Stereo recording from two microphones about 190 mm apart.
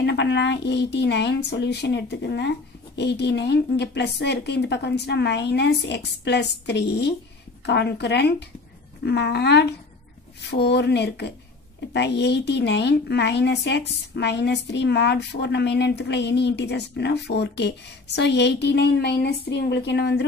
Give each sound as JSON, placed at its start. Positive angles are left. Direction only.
{"t": 0.0, "sound": "a woman's voice", "side_deg": 65}